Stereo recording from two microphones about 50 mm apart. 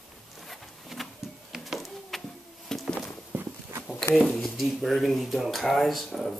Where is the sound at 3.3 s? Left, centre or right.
Right.